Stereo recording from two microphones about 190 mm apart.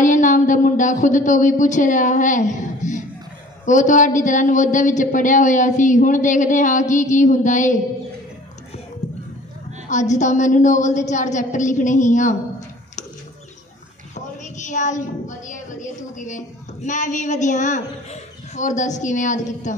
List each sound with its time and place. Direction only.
0.0 s a woman's voice: 40° left (ahead or behind)
9.0 s a sound: 40° left (ahead or behind)
9.8 s a woman's voice: 40° left (ahead or behind)
14.1 s a woman's voice: 40° left (ahead or behind)